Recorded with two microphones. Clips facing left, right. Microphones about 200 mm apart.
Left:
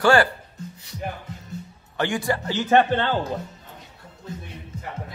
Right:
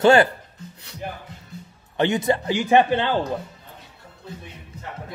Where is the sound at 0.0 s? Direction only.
20° right (ahead or behind).